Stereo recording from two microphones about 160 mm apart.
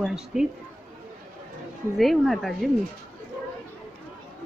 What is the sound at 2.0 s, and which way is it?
Speech, centre (ahead or behind).